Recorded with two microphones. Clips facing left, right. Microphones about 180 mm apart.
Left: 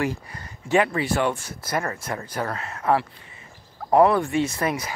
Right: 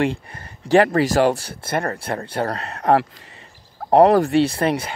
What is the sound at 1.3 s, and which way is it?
Speech, 30° right (ahead or behind).